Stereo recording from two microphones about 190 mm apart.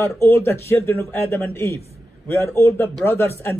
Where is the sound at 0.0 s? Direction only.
15° left (ahead or behind).